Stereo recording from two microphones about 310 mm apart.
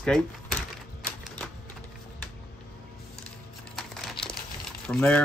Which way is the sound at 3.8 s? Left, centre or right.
Centre.